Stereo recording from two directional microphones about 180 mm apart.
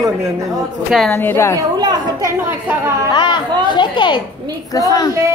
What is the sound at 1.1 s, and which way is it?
Speech, 15° left (ahead or behind).